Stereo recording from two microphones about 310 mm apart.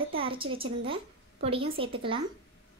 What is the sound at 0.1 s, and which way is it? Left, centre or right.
A woman's voice, centre.